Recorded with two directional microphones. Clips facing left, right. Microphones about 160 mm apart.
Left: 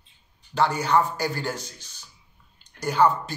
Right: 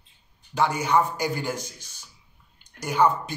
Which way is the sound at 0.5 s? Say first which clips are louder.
Left 1 dB; 10° right (ahead or behind).